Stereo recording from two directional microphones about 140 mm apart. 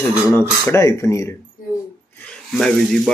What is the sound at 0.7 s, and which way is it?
Speech, 20° left (ahead or behind).